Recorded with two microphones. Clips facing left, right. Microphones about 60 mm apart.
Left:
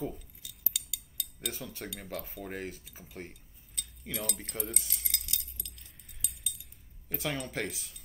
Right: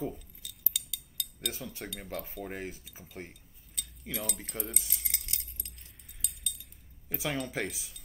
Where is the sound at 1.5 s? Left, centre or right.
Centre.